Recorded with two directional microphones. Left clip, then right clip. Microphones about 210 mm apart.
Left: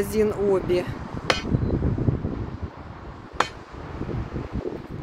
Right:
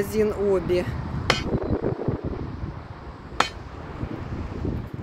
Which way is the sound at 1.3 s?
55° right (ahead or behind).